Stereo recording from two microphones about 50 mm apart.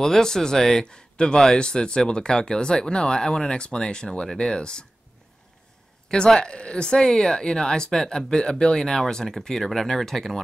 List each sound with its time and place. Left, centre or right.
0.0 s speech: centre
6.0 s speech: centre